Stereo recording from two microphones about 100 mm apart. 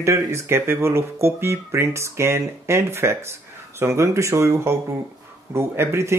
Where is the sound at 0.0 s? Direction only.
30° right (ahead or behind).